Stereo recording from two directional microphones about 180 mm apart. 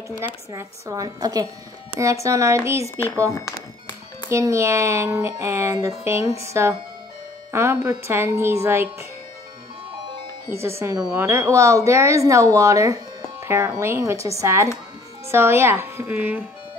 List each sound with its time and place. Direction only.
0.5 s a woman's voice: 20° right (ahead or behind)
4.3 s speech: 15° right (ahead or behind)
10.5 s speech: 15° right (ahead or behind)